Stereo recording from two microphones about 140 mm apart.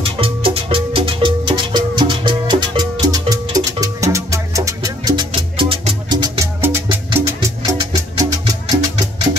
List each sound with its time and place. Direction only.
0.0 s music: 40° right (ahead or behind)